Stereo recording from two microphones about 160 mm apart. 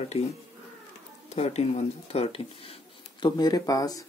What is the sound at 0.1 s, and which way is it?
Speech, 40° left (ahead or behind).